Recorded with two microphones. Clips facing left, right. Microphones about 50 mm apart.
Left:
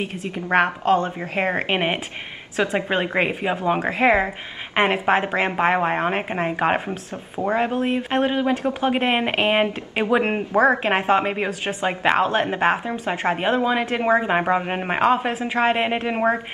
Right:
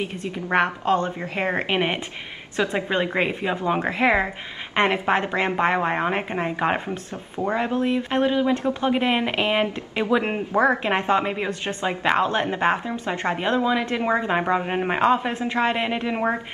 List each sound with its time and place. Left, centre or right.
0.5 s a woman's voice: left
2.7 s a woman's voice: centre
4.7 s a woman's voice: centre
10.8 s a woman's voice: left